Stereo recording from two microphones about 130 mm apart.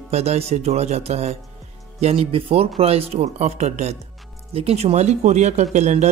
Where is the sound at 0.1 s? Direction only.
55° right (ahead or behind).